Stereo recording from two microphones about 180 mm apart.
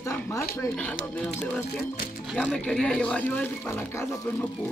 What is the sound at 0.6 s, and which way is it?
Speech, 10° left (ahead or behind).